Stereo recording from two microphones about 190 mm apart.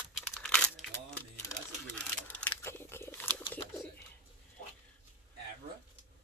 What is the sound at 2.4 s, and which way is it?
Biting, 10° left (ahead or behind).